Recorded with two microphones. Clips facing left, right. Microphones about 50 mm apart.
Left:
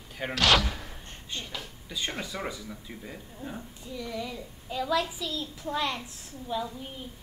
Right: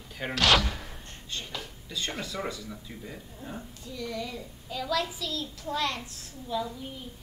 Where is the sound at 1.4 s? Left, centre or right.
Centre.